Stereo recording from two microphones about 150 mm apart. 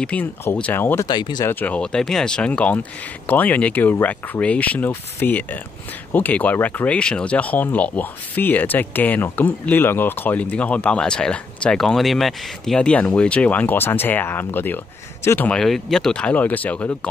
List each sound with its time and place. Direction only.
0.0 s speech: 10° left (ahead or behind)
1.0 s speech: 30° left (ahead or behind)
1.5 s speech: 10° left (ahead or behind)